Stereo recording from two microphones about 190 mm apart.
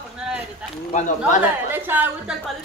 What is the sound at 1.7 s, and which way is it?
Speech, 10° right (ahead or behind).